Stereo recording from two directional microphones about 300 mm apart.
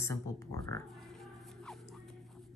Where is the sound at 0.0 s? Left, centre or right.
Centre.